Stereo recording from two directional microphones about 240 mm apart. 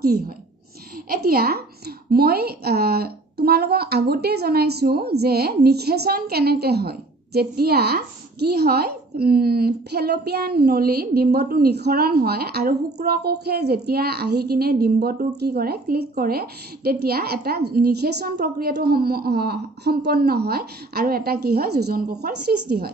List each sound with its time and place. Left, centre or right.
1.0 s a woman's voice: right